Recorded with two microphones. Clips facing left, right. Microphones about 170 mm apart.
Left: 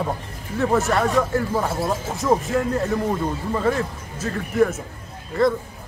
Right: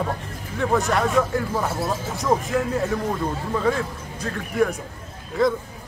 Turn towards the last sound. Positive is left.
turn(degrees=0)  # may be behind; listen again after turning